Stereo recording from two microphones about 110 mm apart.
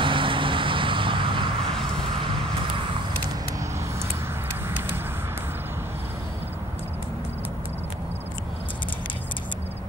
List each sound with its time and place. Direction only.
0.0 s vehicle: 50° right (ahead or behind)